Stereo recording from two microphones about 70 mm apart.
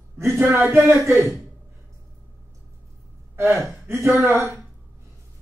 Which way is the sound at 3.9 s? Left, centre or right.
Right.